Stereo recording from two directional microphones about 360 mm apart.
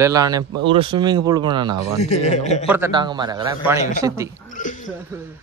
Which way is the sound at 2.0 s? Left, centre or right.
Centre.